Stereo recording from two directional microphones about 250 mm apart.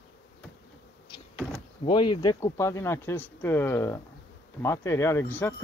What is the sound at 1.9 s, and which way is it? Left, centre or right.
Speech, centre.